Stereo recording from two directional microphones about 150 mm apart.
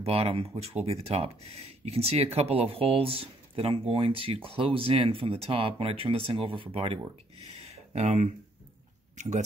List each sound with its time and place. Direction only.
0.0 s speech: 40° right (ahead or behind)